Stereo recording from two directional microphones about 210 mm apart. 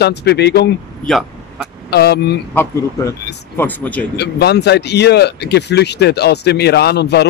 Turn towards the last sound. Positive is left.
turn(degrees=50)  # may be behind; listen again after turning